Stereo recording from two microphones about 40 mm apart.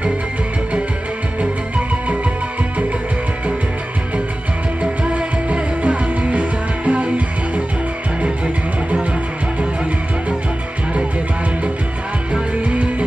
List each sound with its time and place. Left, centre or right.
5.0 s music: right
12.6 s music: right